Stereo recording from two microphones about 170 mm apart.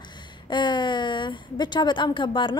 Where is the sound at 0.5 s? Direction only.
25° left (ahead or behind).